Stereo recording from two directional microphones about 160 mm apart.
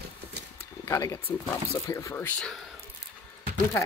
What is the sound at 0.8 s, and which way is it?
Speech, 20° left (ahead or behind).